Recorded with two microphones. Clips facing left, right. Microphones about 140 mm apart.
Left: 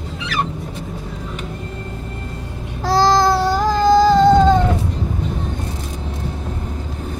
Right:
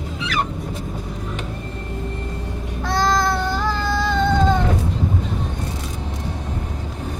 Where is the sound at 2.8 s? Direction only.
30° left (ahead or behind).